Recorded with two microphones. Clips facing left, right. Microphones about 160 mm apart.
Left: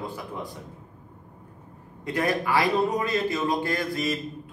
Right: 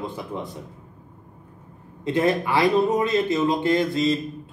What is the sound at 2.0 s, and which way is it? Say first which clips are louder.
A man's voice: right 5 dB; 25° right (ahead or behind).